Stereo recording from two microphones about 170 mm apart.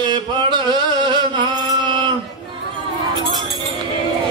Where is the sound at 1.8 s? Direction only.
30° right (ahead or behind).